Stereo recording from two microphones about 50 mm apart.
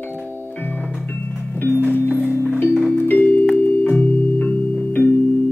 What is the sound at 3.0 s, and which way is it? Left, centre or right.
Music, left.